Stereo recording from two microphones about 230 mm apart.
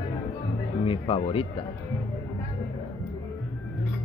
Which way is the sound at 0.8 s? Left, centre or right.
Left.